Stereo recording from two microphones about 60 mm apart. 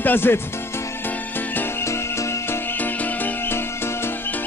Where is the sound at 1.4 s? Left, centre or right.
Left.